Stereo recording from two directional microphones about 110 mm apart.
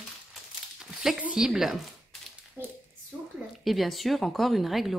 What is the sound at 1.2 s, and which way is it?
Speech, 10° right (ahead or behind).